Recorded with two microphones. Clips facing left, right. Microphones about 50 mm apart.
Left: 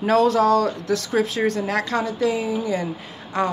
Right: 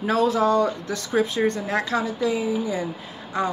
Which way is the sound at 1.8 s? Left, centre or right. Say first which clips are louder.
Left 2 dB; left.